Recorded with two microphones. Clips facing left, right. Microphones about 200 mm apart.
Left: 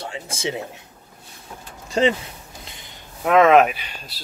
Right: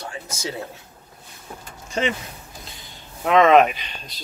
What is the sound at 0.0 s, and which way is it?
Speech, 25° left (ahead or behind).